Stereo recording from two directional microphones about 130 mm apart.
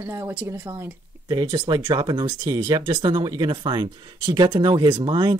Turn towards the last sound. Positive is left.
turn(degrees=-35)  # may be behind; listen again after turning